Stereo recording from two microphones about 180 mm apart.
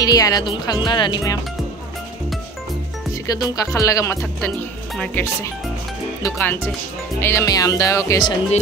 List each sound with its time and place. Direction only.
0.0 s speech: 20° left (ahead or behind)
3.1 s speech: 20° left (ahead or behind)